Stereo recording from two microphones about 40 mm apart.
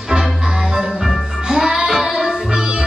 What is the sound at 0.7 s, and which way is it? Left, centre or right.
Music, centre.